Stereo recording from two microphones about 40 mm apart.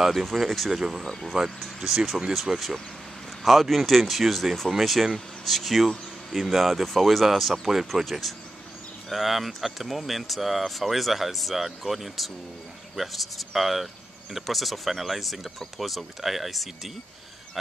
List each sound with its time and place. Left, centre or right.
0.0 s speech: centre
1.3 s speech: right; by 16.9 s centre